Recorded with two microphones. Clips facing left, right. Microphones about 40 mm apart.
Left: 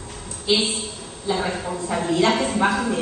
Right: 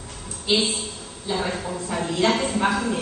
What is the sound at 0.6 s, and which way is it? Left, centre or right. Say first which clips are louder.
A woman's voice: even; centre.